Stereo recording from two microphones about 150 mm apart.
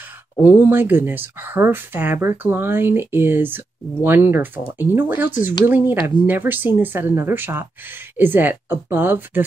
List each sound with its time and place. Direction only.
0.4 s speech: 15° right (ahead or behind)